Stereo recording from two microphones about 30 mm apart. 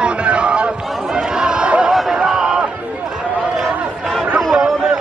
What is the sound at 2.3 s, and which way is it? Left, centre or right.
Crowd, right.